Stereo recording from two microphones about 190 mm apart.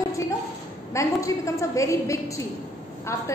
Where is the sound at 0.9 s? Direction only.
15° left (ahead or behind).